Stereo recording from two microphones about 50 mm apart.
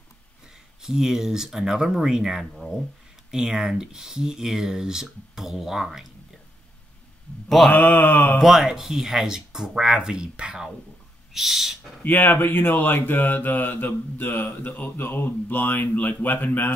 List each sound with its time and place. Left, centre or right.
0.8 s speech: centre
7.4 s mantra: centre
7.7 s speech: left
8.4 s speech: centre
11.3 s owl: centre
12.0 s speech: left